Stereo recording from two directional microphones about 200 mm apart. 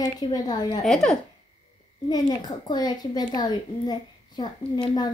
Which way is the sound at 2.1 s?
20° left (ahead or behind).